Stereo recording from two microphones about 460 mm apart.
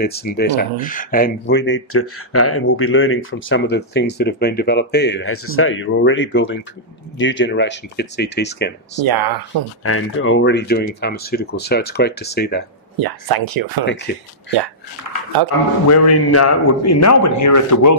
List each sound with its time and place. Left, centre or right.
0.0 s speech: centre
9.0 s speech: right
9.8 s speech: left
13.0 s speech: right
14.1 s speech: left
15.9 s a man's voice: left